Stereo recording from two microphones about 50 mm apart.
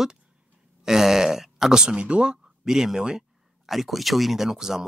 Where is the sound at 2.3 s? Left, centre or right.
Centre.